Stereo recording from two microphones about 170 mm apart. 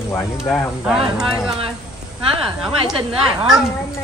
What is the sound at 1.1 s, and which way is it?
Speech, 5° right (ahead or behind).